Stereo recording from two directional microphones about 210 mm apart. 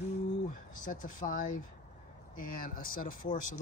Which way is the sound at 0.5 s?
40° left (ahead or behind).